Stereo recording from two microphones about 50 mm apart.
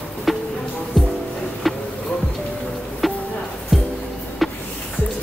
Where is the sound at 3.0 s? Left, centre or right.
Centre.